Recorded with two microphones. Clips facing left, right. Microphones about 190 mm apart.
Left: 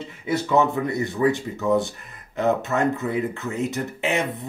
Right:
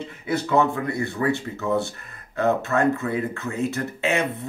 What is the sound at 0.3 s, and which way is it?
Speech, 15° left (ahead or behind).